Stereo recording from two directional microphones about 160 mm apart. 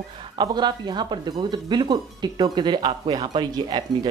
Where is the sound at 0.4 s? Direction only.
25° right (ahead or behind).